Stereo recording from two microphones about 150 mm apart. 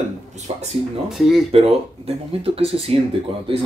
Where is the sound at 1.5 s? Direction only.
40° right (ahead or behind).